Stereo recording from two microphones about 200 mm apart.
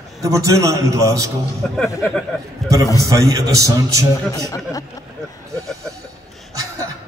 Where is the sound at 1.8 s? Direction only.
10° left (ahead or behind).